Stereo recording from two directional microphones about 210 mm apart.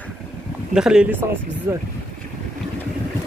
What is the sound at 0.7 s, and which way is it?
Speech, 5° right (ahead or behind).